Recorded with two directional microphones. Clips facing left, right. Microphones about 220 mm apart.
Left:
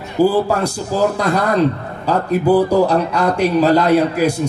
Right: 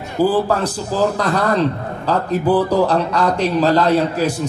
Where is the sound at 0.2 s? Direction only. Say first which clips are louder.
Left 2 dB; 10° left (ahead or behind).